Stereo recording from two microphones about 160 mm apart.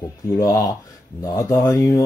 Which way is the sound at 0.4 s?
20° left (ahead or behind).